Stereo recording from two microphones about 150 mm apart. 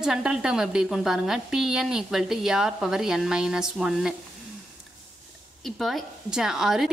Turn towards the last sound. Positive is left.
turn(degrees=-5)  # may be behind; listen again after turning